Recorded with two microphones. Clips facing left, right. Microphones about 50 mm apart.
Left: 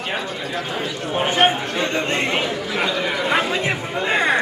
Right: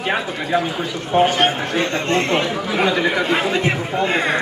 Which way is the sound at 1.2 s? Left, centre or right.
Centre.